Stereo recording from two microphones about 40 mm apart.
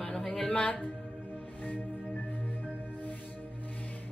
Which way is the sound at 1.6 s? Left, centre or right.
Left.